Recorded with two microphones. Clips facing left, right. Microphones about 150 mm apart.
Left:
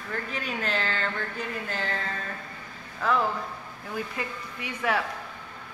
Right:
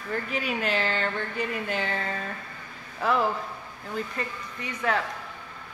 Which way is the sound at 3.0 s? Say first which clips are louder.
Right 1 dB; 10° right (ahead or behind).